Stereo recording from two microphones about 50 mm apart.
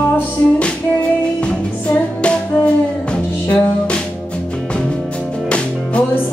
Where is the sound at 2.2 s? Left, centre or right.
Left.